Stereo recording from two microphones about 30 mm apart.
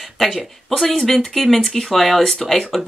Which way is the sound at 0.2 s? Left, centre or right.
Centre.